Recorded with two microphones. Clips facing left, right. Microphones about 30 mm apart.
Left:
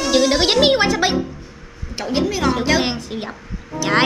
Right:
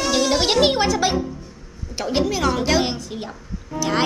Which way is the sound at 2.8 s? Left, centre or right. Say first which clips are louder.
Left 2 dB; left.